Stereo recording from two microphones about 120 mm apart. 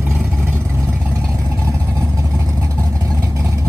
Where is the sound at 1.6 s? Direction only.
25° right (ahead or behind).